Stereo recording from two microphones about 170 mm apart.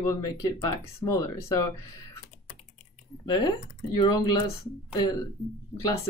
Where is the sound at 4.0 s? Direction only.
25° left (ahead or behind).